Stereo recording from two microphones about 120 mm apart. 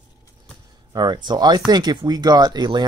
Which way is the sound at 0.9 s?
35° right (ahead or behind).